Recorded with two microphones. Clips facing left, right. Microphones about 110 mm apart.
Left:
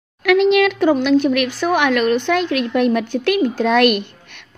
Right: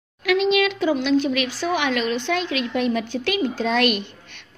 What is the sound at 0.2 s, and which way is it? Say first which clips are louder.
A woman's voice: left 6 dB; 55° left (ahead or behind).